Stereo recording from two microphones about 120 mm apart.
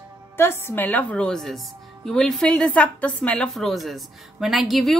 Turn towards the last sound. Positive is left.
turn(degrees=0)  # may be behind; listen again after turning